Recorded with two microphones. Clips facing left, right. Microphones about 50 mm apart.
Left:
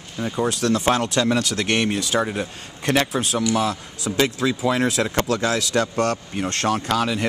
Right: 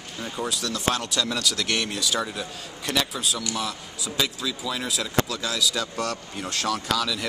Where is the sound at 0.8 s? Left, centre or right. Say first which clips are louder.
Left 6 dB; left.